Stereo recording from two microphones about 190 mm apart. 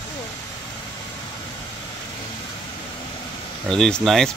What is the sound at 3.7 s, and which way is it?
Speech, 5° left (ahead or behind).